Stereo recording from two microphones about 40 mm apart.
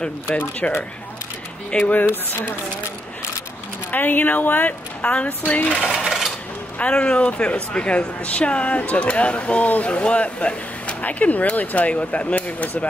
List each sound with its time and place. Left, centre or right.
1.7 s speech: centre
2.0 s speech: left
3.9 s speech: left
5.0 s a woman's voice: left
5.4 s speech: left
6.0 s coin: centre
6.8 s a woman's voice: left
11.9 s a woman's voice: left